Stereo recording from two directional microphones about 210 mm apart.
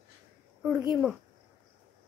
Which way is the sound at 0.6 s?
5° right (ahead or behind).